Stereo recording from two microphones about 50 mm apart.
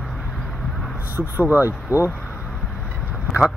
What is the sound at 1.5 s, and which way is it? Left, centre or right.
Speech, right.